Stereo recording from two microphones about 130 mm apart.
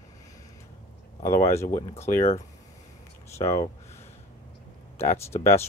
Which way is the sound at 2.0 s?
55° left (ahead or behind).